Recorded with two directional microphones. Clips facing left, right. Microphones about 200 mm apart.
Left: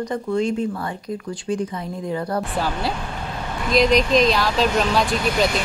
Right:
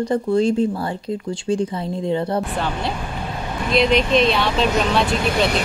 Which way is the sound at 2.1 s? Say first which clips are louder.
Right 3 dB; 25° right (ahead or behind).